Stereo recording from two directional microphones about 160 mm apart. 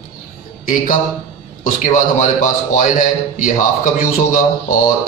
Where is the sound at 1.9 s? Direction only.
55° left (ahead or behind).